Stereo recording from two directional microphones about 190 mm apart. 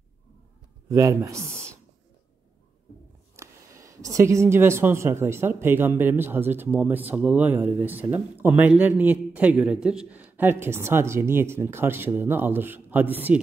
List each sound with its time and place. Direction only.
0.8 s speech: 15° right (ahead or behind)
3.3 s speech: 15° right (ahead or behind)